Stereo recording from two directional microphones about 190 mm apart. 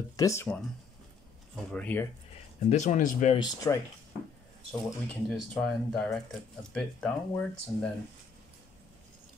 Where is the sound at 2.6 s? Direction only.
40° left (ahead or behind).